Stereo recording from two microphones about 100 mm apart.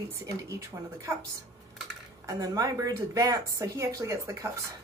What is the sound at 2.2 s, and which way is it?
A woman's voice, 35° right (ahead or behind).